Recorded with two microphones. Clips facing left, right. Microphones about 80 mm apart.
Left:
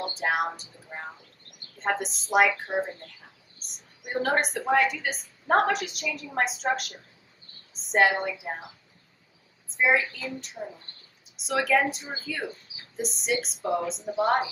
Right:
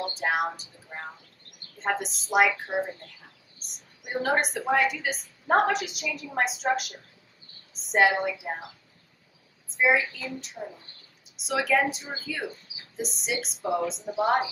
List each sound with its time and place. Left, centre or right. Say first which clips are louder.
0.1 s a woman's voice: left 1 dB; centre
9.7 s a woman's voice: even; centre